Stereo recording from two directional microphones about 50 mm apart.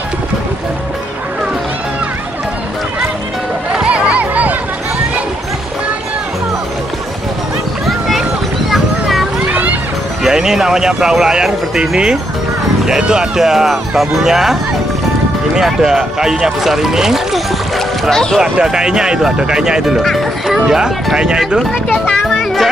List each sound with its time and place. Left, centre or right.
3.7 s a sound: right
7.8 s a sound: centre
9.5 s music: right
10.2 s speech: centre
18.1 s speech: centre
18.4 s speech: centre
22.3 s music: centre